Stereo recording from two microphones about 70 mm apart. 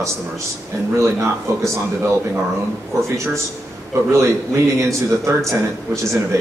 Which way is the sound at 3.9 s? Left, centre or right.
Right.